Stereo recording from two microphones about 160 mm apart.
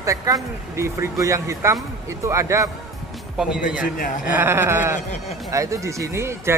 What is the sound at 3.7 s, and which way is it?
Speech, 60° left (ahead or behind).